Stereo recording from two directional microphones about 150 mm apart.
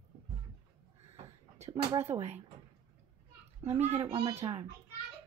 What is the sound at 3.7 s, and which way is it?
Speech, 45° right (ahead or behind).